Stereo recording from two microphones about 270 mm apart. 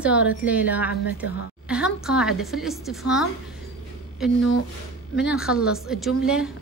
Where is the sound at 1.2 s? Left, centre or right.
Centre.